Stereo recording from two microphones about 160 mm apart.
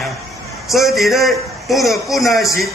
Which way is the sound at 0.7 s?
Centre (ahead or behind).